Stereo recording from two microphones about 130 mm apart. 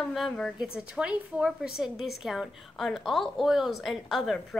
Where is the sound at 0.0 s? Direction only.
Centre (ahead or behind).